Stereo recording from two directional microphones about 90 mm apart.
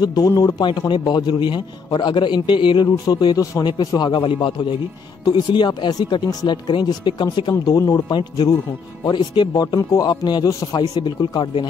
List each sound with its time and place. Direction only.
0.0 s a man's voice: 45° left (ahead or behind)